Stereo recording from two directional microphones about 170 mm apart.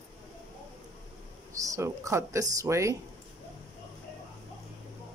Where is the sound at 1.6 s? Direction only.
20° right (ahead or behind).